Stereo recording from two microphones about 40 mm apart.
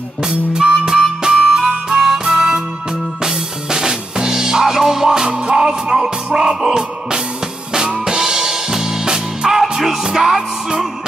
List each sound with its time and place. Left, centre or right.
0.2 s music: centre